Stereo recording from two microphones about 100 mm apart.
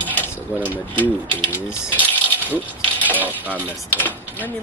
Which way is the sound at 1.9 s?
15° left (ahead or behind).